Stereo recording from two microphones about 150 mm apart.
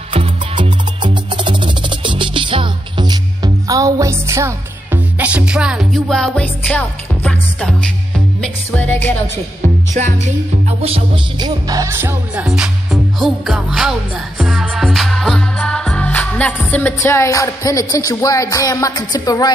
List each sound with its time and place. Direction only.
0.1 s music: 35° right (ahead or behind); by 9.1 s 10° left (ahead or behind)
9.9 s music: 50° right (ahead or behind)
11.3 s music: 25° right (ahead or behind)
12.4 s music: 5° right (ahead or behind); by 19.5 s 25° left (ahead or behind)